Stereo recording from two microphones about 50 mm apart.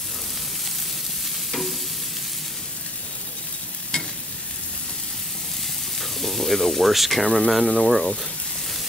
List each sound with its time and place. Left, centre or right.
1.5 s stir: centre
5.9 s speech: centre